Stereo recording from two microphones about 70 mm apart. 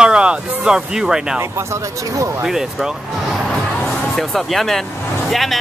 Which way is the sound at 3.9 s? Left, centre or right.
Centre.